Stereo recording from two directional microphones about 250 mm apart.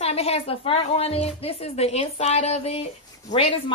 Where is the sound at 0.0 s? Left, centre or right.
Left.